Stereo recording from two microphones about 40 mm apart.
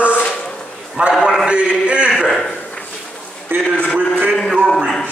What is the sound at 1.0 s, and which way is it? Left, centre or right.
A man's voice, right.